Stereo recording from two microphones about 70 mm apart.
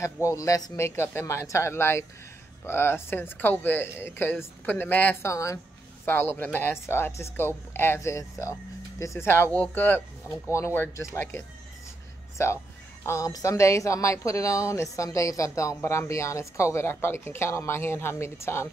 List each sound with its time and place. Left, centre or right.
0.0 s speech: left
0.7 s speech: left
5.2 s speech: left
6.0 s speech: left
8.0 s speech: left
16.9 s speech: left